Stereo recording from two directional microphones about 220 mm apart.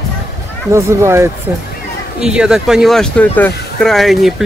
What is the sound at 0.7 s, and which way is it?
Speech, 10° right (ahead or behind).